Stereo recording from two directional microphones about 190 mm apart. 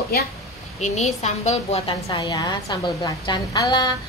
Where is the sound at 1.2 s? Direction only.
35° left (ahead or behind).